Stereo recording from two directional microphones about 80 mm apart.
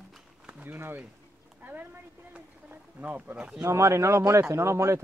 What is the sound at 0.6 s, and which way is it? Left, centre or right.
Speech, right.